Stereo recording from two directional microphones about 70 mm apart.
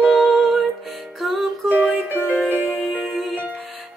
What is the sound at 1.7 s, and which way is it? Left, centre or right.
Music, right.